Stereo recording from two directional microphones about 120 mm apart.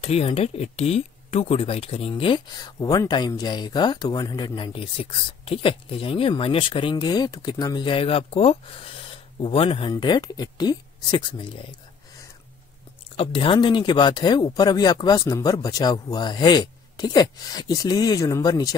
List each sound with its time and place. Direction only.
0.0 s speech: 55° left (ahead or behind); by 4.6 s 35° left (ahead or behind)
4.7 s speech: 50° left (ahead or behind)
13.1 s speech: 50° left (ahead or behind); by 18.8 s 30° left (ahead or behind)